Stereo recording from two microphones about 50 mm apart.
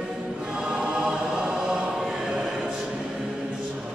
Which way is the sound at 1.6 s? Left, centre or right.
Centre.